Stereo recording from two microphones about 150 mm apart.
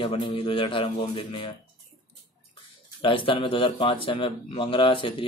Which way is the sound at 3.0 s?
35° left (ahead or behind).